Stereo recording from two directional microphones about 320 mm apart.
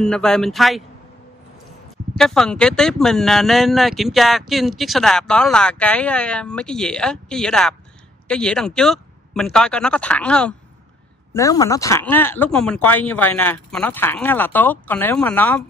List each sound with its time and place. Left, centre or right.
0.0 s speech: centre
2.1 s speech: centre